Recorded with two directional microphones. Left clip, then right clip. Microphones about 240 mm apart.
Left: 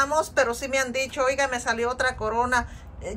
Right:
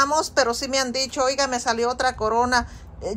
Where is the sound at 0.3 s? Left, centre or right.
Centre.